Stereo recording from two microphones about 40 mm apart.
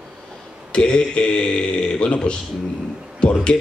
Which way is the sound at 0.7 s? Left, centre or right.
Left.